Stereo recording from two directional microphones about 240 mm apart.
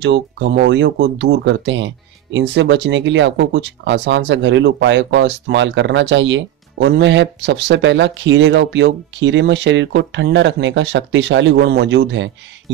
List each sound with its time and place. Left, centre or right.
0.0 s speech: right